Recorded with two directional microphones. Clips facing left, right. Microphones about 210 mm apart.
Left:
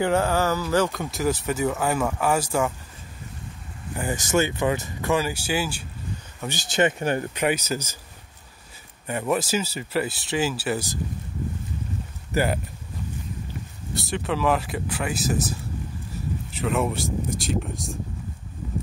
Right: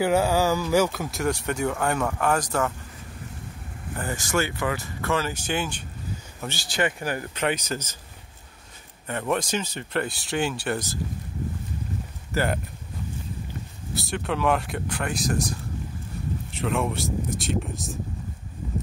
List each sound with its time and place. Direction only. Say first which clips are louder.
0.0 s speech: right 1 dB; 10° right (ahead or behind); by 2.7 s 10° left (ahead or behind)
3.9 s speech: left 3 dB; 15° left (ahead or behind)
6.4 s speech: left 4 dB; 20° left (ahead or behind)
7.3 s speech: left 2 dB; 10° left (ahead or behind)
9.0 s speech: left 2 dB; 10° left (ahead or behind)
12.3 s speech: left 2 dB; 15° left (ahead or behind)
13.9 s speech: left 1 dB; centre (ahead or behind)
16.5 s speech: left 2 dB; centre (ahead or behind)